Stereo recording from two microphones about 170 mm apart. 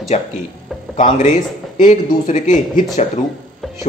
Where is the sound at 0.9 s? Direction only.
45° left (ahead or behind).